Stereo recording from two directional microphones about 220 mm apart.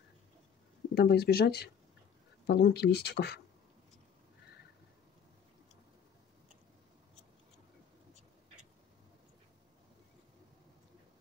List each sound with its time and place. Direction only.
0.9 s speech: 45° left (ahead or behind)